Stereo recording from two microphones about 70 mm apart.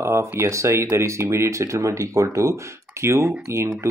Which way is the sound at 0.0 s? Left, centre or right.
Right.